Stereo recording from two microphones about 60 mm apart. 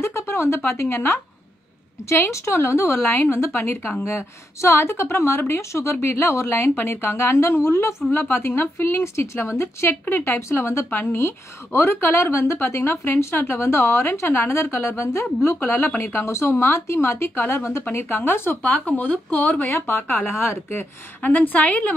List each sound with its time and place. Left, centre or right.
0.0 s a sound: left
0.7 s a woman's voice: left
8.1 s a woman's voice: left
18.6 s a woman's voice: left